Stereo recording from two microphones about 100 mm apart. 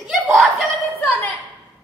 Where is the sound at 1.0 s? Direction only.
15° left (ahead or behind).